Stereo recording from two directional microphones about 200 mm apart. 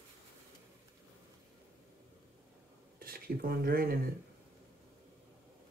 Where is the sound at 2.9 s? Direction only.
50° right (ahead or behind).